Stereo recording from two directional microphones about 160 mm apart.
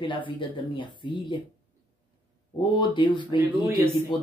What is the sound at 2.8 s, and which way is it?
Speech, 30° left (ahead or behind).